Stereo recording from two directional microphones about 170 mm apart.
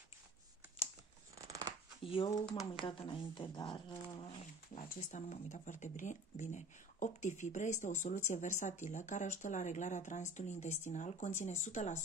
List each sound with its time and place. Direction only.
1.4 s shuffling cards: 20° right (ahead or behind)
2.0 s speech: 30° left (ahead or behind)
4.7 s speech: 50° left (ahead or behind)